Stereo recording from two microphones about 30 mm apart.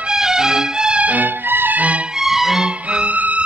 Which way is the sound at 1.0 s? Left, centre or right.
Right.